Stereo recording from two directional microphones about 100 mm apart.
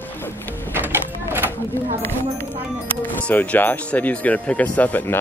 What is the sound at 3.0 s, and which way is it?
Speech, 20° left (ahead or behind).